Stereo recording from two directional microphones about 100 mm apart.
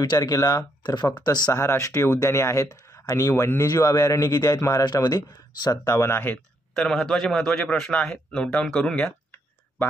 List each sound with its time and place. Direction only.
0.0 s speech: 40° left (ahead or behind)
1.6 s speech: 30° left (ahead or behind)
4.8 s speech: 45° left (ahead or behind); by 6.4 s 20° left (ahead or behind)
6.7 s a man's voice: 5° left (ahead or behind)